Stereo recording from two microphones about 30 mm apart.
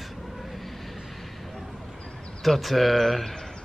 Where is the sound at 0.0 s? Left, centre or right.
Centre.